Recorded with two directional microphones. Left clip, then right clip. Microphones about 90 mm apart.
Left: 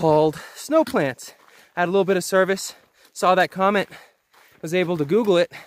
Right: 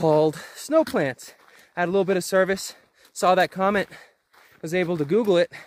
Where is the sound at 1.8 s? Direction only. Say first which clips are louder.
Left 2 dB; 25° left (ahead or behind).